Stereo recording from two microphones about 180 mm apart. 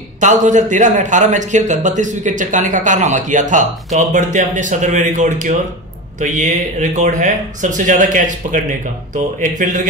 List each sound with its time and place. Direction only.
0.2 s a man's voice: 45° right (ahead or behind)